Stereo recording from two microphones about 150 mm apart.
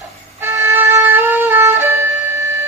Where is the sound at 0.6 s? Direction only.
15° right (ahead or behind).